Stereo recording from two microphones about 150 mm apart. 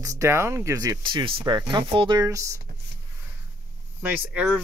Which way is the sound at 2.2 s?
20° right (ahead or behind).